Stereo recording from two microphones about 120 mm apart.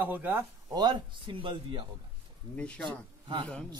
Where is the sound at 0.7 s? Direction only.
35° right (ahead or behind).